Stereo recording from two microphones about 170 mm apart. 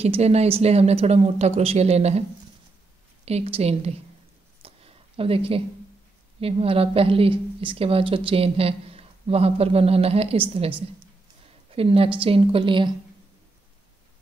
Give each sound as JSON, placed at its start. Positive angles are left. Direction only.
{"t": 0.0, "sound": "a woman's voice", "side_deg": -35}
{"t": 3.3, "sound": "a woman's voice", "side_deg": -35}
{"t": 4.6, "sound": "a sound", "side_deg": -35}
{"t": 6.4, "sound": "a woman's voice", "side_deg": -35}
{"t": 11.7, "sound": "a woman's voice", "side_deg": -35}